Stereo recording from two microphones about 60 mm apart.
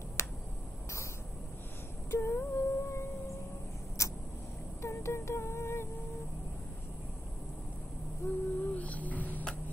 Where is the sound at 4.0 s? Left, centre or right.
Left.